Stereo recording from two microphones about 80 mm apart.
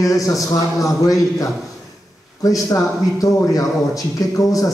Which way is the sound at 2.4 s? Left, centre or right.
Left.